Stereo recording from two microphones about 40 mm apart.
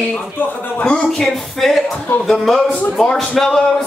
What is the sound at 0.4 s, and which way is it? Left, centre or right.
Speech, left.